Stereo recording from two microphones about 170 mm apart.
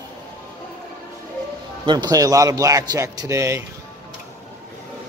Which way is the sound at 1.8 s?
25° right (ahead or behind).